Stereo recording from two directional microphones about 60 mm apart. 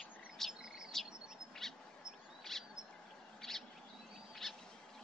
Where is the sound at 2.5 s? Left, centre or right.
Centre.